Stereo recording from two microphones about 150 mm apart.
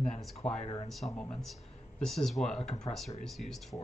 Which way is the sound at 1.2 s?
5° left (ahead or behind).